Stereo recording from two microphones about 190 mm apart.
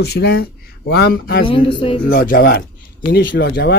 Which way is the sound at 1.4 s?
25° left (ahead or behind).